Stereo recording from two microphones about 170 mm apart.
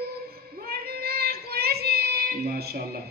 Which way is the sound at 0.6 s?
60° right (ahead or behind).